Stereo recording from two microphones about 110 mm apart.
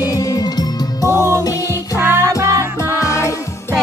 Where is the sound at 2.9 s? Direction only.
25° left (ahead or behind).